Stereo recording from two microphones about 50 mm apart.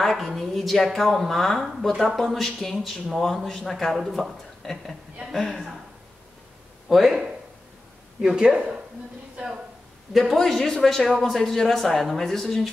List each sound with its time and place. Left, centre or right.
0.0 s a man's voice: centre
6.9 s a man's voice: centre
8.4 s speech: centre
10.2 s a man's voice: centre